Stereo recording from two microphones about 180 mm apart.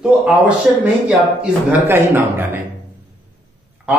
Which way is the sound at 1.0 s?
5° right (ahead or behind).